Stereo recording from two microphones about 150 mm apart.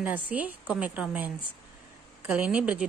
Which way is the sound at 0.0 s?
10° right (ahead or behind).